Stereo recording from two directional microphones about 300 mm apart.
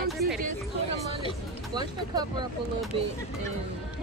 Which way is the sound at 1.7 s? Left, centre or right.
Centre.